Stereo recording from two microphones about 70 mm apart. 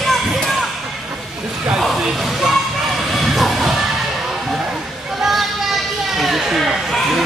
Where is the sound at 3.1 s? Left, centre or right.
Centre.